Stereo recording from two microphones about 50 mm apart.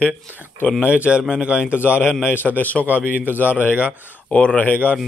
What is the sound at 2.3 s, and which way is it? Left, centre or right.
A man's voice, left.